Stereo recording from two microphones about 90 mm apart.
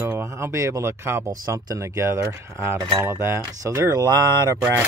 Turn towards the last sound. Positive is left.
turn(degrees=-40)  # may be behind; listen again after turning